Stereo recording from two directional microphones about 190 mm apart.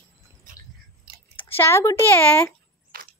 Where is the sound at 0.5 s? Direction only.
45° right (ahead or behind).